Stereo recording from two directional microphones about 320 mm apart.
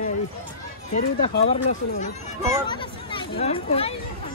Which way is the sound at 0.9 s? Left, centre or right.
Left.